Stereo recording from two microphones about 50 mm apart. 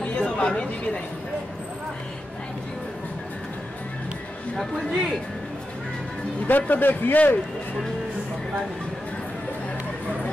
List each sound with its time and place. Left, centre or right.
0.0 s chatter: left
4.6 s speech: centre
6.4 s a man's voice: left